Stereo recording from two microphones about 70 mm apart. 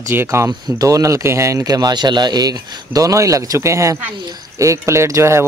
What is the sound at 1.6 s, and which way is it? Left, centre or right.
Speech, right.